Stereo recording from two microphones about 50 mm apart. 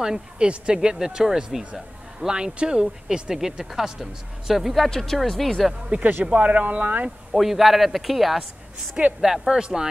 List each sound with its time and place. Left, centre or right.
0.0 s speech: centre
5.9 s speech: right
7.3 s speech: centre